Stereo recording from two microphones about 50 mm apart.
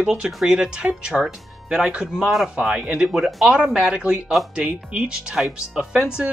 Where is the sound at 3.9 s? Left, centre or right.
Centre.